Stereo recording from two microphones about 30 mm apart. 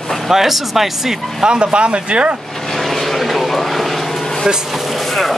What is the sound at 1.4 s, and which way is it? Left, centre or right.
Speech, right.